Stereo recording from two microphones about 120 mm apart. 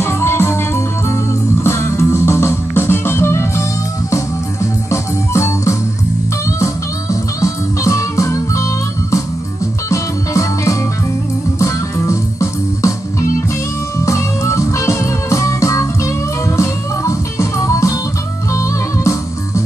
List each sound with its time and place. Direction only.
0.0 s music: 20° left (ahead or behind)
4.9 s organ: 25° left (ahead or behind)
6.6 s music: 25° left (ahead or behind)
9.8 s music: 25° left (ahead or behind)
14.0 s music: 25° left (ahead or behind)